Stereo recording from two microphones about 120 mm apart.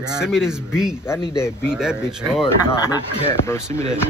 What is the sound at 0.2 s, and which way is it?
Speech, 5° right (ahead or behind).